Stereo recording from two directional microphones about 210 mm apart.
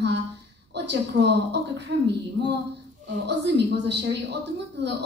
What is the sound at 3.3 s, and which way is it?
A woman's voice, 55° right (ahead or behind).